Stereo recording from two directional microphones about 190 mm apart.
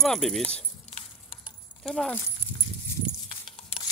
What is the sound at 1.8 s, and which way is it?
Speech, centre (ahead or behind).